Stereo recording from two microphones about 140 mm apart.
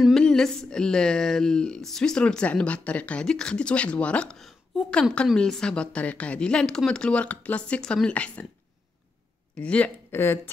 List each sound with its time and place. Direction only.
0.0 s speech: 5° left (ahead or behind)
9.6 s speech: 10° left (ahead or behind)